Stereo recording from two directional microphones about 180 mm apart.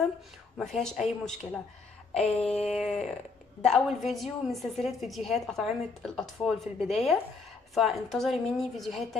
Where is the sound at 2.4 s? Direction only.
35° left (ahead or behind).